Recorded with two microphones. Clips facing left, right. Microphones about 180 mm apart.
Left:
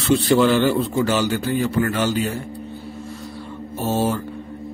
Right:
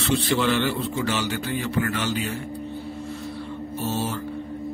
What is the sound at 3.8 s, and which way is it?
Mantra, 50° left (ahead or behind).